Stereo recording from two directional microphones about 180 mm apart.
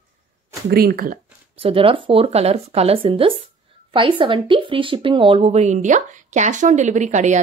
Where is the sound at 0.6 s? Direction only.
55° right (ahead or behind).